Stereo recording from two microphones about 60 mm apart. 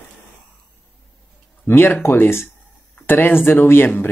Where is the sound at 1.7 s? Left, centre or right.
Left.